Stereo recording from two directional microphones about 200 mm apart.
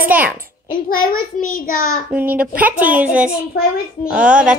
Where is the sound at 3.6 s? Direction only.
50° left (ahead or behind).